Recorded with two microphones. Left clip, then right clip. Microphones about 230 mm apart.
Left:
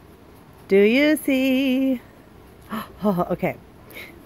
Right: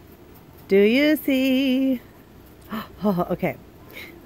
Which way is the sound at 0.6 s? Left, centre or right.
Centre.